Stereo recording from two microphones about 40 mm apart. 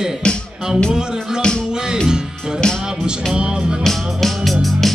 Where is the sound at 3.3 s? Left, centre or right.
Right.